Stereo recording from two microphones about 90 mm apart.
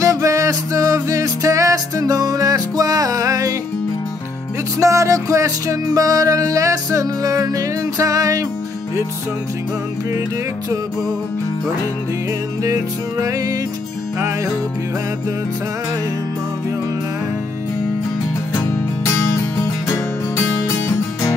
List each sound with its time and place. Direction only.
0.0 s music: 35° right (ahead or behind)
4.7 s music: 35° right (ahead or behind)
12.6 s music: 40° right (ahead or behind)
19.6 s music: 30° left (ahead or behind)